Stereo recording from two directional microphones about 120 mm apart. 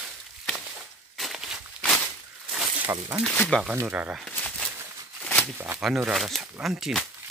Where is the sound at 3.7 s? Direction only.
15° right (ahead or behind).